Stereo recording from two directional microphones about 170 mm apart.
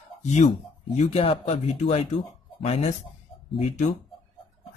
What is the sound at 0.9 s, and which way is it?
Speech, 35° left (ahead or behind).